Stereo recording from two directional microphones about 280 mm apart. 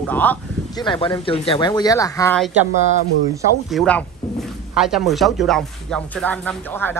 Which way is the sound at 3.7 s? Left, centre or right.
Centre.